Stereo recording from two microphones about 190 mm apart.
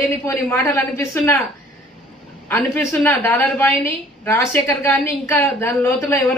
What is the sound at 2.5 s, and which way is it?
A woman's voice, 10° left (ahead or behind).